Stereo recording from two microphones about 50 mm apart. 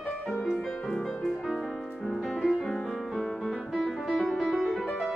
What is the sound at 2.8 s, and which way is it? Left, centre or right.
Music, centre.